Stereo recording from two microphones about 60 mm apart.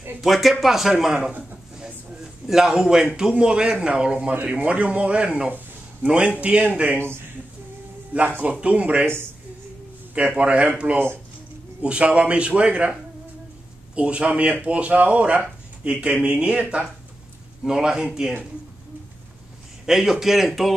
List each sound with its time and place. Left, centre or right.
0.2 s speech: centre
2.4 s a man's voice: centre
8.4 s speech: right
9.0 s speech: right
10.1 s speech: right
11.8 s speech: centre
13.9 s a man's voice: centre
19.9 s speech: centre